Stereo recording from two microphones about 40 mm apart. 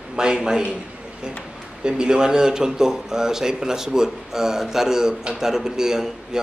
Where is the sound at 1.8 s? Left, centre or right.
Right.